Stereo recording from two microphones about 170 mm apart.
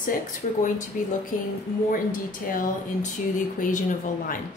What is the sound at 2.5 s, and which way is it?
Speech, 50° left (ahead or behind).